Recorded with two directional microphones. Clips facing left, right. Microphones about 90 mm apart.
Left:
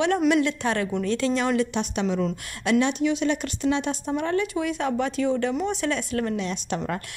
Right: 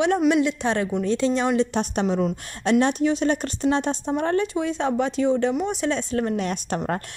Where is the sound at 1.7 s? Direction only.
40° right (ahead or behind).